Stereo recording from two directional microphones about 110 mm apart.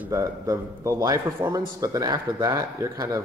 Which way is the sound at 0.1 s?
30° right (ahead or behind).